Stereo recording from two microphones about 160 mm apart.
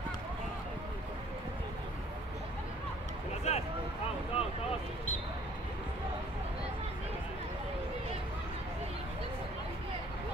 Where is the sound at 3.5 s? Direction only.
45° left (ahead or behind).